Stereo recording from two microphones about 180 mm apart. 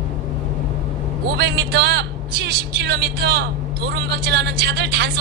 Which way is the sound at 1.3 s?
65° right (ahead or behind).